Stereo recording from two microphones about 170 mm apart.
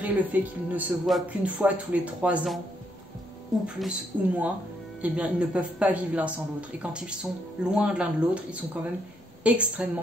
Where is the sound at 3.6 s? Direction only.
5° right (ahead or behind).